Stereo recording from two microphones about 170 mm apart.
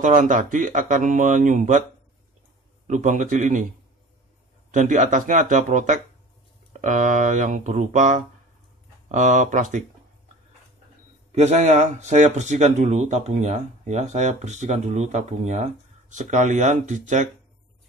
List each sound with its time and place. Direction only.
0.0 s speech: 50° right (ahead or behind)
2.9 s speech: 45° right (ahead or behind)
4.6 s speech: 50° right (ahead or behind)
11.3 s speech: 40° right (ahead or behind)